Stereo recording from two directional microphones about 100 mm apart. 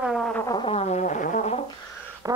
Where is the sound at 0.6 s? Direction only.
90° left.